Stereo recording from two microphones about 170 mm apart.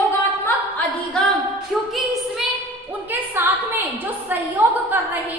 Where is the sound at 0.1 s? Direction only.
10° left (ahead or behind).